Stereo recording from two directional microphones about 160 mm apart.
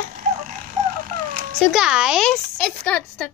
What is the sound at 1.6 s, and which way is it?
Speech, 5° right (ahead or behind).